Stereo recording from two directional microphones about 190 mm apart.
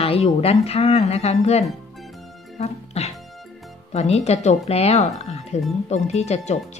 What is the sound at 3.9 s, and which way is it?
A woman's voice, 35° left (ahead or behind).